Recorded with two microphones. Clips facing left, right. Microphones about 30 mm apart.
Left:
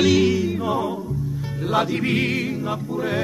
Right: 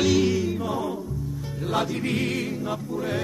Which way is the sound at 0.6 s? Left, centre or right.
Centre.